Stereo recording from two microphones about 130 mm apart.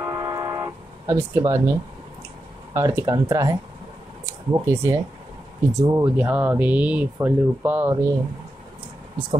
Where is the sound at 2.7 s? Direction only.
25° right (ahead or behind).